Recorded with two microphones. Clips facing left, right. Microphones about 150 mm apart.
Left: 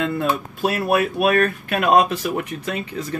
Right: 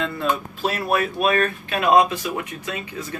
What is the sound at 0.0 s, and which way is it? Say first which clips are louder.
Speech: left 2 dB; 55° left (ahead or behind).